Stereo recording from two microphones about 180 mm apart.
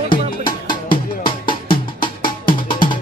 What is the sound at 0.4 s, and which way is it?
Music, 50° left (ahead or behind).